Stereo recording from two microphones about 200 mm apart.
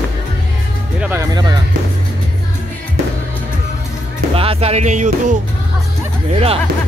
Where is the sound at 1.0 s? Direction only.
10° right (ahead or behind).